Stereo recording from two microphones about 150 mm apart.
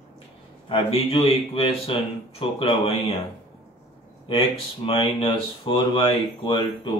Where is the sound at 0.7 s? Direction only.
40° left (ahead or behind).